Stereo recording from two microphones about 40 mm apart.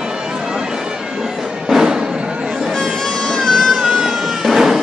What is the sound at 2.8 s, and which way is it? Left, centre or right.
Music, centre.